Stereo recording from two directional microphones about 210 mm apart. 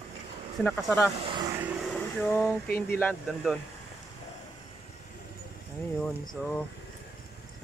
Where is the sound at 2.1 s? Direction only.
5° left (ahead or behind).